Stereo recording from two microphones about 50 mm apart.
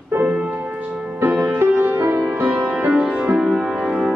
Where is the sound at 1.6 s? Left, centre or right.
Right.